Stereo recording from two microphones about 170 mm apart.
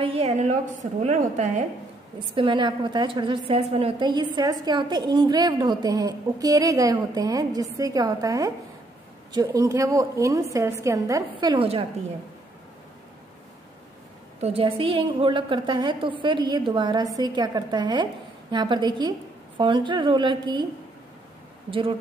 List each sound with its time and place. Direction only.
0.0 s a woman's voice: 35° right (ahead or behind)
2.3 s a woman's voice: 30° right (ahead or behind)
14.4 s a woman's voice: 35° right (ahead or behind)
21.6 s speech: 30° right (ahead or behind)